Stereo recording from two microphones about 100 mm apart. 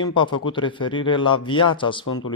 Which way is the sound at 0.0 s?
50° left (ahead or behind).